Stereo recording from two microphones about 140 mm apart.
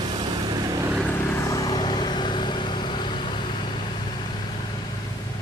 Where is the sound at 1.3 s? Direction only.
20° left (ahead or behind).